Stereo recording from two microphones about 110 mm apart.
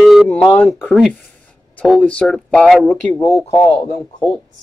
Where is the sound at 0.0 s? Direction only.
Centre (ahead or behind).